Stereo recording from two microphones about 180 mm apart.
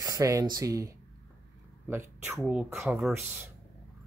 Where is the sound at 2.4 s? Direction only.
Centre (ahead or behind).